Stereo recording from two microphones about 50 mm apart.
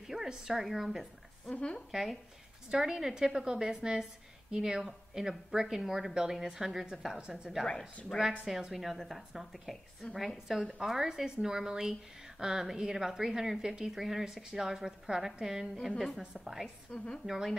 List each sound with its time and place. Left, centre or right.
0.0 s a woman's voice: centre
1.5 s speech: left
1.9 s a woman's voice: centre
8.1 s speech: centre
8.5 s a woman's voice: centre
16.3 s a woman's voice: centre
16.9 s speech: left